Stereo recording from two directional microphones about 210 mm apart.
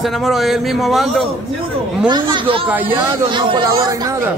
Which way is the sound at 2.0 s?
20° right (ahead or behind).